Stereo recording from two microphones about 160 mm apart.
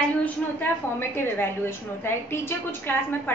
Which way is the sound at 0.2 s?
10° left (ahead or behind).